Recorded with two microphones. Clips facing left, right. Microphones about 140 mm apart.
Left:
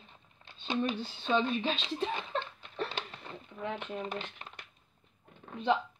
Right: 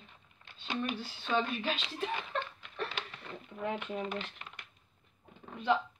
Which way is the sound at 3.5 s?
Centre (ahead or behind).